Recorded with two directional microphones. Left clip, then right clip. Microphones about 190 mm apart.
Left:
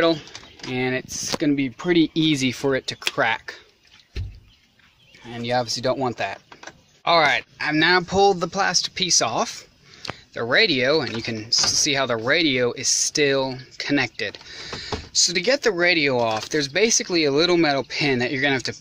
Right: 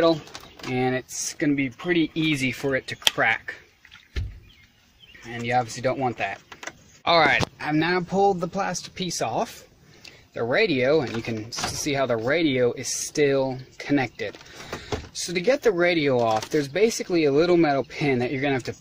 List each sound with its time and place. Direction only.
0.7 s speech: centre (ahead or behind)
1.4 s speech: 25° left (ahead or behind)
5.3 s speech: 10° left (ahead or behind)
7.1 s speech: centre (ahead or behind)
7.5 s speech: 10° right (ahead or behind)
7.9 s speech: 5° left (ahead or behind)